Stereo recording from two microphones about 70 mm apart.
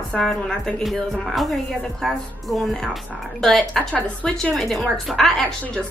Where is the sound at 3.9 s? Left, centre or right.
Centre.